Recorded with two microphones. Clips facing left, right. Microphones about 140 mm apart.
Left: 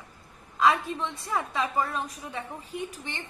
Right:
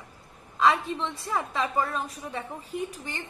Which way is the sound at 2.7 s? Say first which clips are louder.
Right 3 dB; 40° right (ahead or behind).